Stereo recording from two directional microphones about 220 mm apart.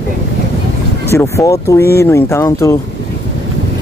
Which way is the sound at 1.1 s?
10° left (ahead or behind).